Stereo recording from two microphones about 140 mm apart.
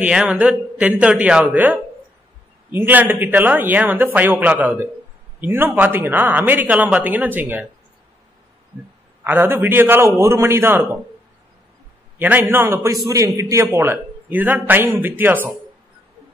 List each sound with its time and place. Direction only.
0.0 s a man's voice: 5° right (ahead or behind)
9.2 s a man's voice: 15° right (ahead or behind)
12.2 s a man's voice: 15° right (ahead or behind)